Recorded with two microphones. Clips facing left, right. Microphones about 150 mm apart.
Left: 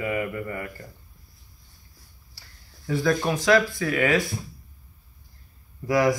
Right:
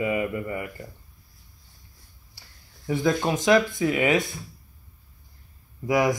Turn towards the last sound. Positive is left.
turn(degrees=-15)  # may be behind; listen again after turning